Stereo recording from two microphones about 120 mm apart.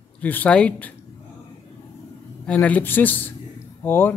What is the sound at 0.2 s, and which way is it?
Speech, 15° left (ahead or behind).